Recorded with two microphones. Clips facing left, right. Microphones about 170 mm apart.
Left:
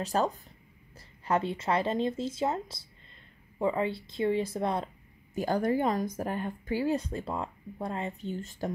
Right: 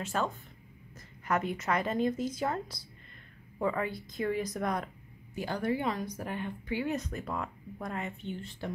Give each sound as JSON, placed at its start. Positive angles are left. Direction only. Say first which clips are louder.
{"t": 0.0, "sound": "speech", "louder": "left 4 dB", "side_deg": 35}
{"t": 5.3, "sound": "speech", "louder": "left 4 dB", "side_deg": 45}